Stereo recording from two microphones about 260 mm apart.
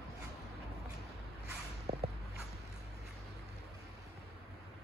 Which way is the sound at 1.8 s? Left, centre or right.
Right.